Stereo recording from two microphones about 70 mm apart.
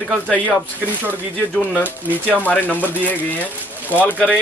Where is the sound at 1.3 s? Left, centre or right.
Left.